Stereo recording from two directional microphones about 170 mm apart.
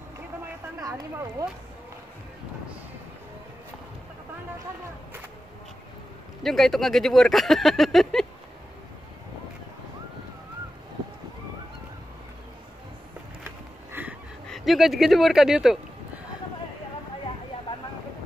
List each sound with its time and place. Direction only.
0.7 s speech: 20° right (ahead or behind)
6.4 s speech: centre (ahead or behind)
14.0 s a sound: 10° right (ahead or behind)
14.5 s speech: centre (ahead or behind)